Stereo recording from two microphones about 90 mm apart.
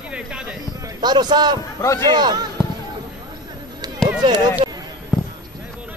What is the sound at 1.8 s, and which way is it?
Speech, 30° left (ahead or behind).